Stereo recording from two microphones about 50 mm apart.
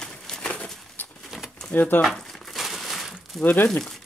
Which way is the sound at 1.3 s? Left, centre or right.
Centre.